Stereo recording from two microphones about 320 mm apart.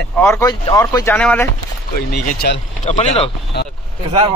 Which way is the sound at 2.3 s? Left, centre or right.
Left.